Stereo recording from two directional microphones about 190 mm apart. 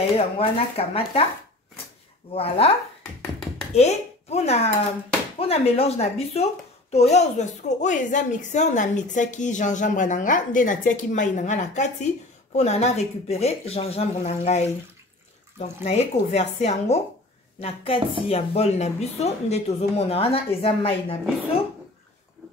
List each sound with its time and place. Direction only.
0.2 s a woman's voice: 30° left (ahead or behind)
2.3 s a woman's voice: 30° left (ahead or behind)
3.7 s a woman's voice: 35° left (ahead or behind)
15.6 s a woman's voice: 35° left (ahead or behind)